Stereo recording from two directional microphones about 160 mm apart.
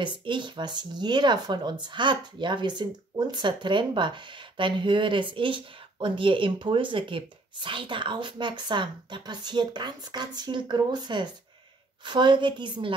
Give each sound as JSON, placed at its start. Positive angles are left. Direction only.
{"t": 0.0, "sound": "speech", "side_deg": -30}